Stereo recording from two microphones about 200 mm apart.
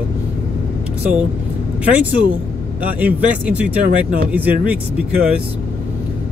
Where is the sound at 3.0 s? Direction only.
5° right (ahead or behind).